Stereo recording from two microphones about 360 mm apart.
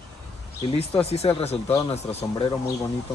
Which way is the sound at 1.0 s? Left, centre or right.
Centre.